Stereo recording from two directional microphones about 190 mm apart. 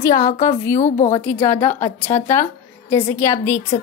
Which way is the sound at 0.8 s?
40° left (ahead or behind).